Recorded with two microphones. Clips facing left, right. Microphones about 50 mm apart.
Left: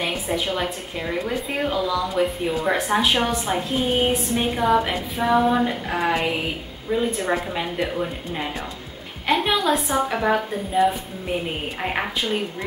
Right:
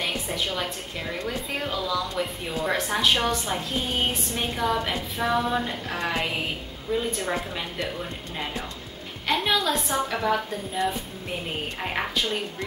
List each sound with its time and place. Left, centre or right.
0.0 s a sound: centre
1.1 s a woman's voice: centre
1.7 s a woman's voice: left
9.3 s a woman's voice: centre
11.8 s a woman's voice: centre